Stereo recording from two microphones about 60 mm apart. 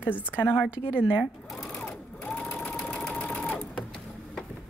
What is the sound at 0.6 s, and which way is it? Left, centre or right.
Speech, right.